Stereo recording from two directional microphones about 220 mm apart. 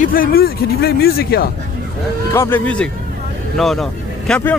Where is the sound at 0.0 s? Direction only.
40° left (ahead or behind).